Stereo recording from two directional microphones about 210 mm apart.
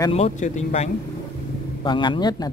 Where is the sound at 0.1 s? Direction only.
30° left (ahead or behind).